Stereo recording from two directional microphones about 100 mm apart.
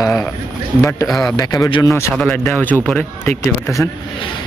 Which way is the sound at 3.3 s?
30° left (ahead or behind).